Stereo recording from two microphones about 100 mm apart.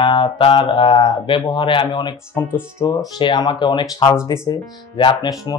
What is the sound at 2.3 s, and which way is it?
Speech, 25° left (ahead or behind).